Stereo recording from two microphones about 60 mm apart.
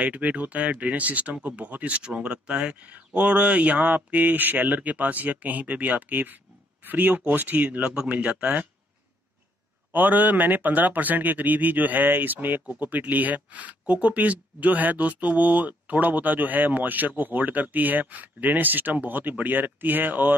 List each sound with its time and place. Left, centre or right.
0.0 s speech: right
9.9 s speech: right